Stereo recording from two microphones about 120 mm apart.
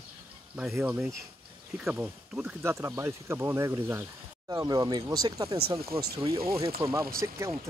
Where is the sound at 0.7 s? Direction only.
10° right (ahead or behind).